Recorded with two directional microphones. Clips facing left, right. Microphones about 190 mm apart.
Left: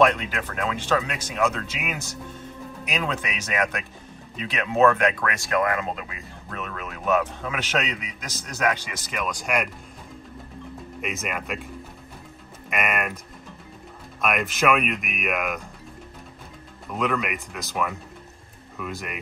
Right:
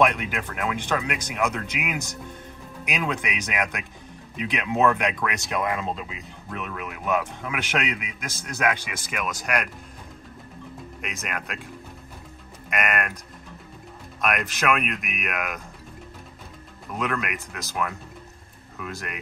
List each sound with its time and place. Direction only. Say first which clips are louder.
0.0 s speech: left 2 dB; 15° right (ahead or behind)
11.0 s speech: left 4 dB; centre (ahead or behind)
12.6 s speech: even; centre (ahead or behind)
14.2 s speech: left 2 dB; centre (ahead or behind)
16.9 s speech: left 2 dB; centre (ahead or behind)